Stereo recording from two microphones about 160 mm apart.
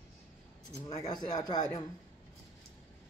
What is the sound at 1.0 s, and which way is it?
Speech, 25° left (ahead or behind).